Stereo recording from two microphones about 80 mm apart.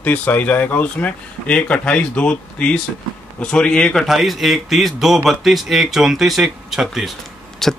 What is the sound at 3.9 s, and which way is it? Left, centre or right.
Speech, centre.